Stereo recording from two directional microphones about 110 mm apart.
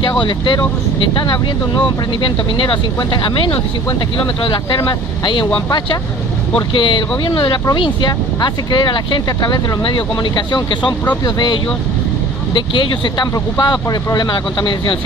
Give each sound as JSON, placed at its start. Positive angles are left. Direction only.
{"t": 0.2, "sound": "speech", "side_deg": 45}
{"t": 6.7, "sound": "speech", "side_deg": 50}
{"t": 13.3, "sound": "speech", "side_deg": 35}